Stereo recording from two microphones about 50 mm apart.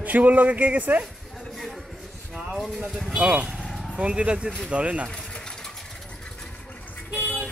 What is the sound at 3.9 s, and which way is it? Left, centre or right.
Speech, right.